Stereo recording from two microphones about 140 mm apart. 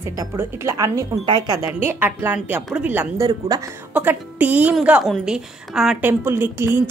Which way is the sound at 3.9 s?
10° right (ahead or behind).